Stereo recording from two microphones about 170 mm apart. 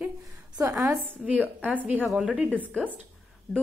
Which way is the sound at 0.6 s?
20° right (ahead or behind).